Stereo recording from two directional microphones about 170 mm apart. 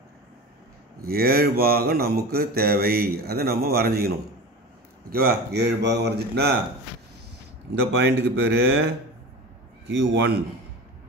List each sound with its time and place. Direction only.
1.0 s a sound: 65° right (ahead or behind)
5.1 s speech: 70° right (ahead or behind)
8.0 s a man's voice: 75° right (ahead or behind)